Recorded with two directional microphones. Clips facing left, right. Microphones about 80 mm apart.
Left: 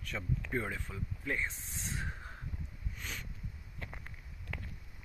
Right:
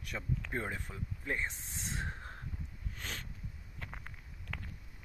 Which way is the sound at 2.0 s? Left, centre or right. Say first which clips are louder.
Right 1 dB; right.